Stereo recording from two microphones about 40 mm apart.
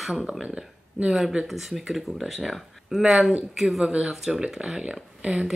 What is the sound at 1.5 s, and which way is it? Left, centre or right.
Speech, centre.